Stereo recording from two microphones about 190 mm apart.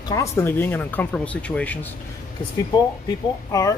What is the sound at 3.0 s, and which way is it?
Speech, 20° left (ahead or behind).